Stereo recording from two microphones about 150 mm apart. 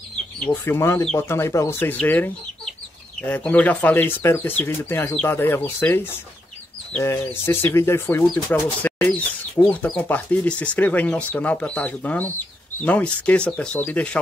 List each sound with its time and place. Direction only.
0.5 s speech: 15° left (ahead or behind)